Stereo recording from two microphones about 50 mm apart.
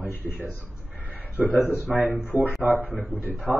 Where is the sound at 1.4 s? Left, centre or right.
Right.